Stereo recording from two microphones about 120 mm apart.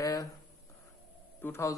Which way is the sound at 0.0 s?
30° left (ahead or behind).